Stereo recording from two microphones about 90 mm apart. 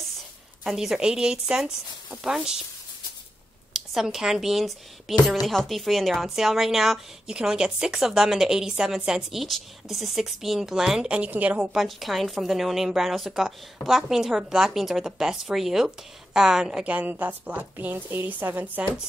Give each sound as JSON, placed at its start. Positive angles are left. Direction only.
{"t": 0.7, "sound": "speech", "side_deg": -5}
{"t": 3.7, "sound": "a woman's voice", "side_deg": -5}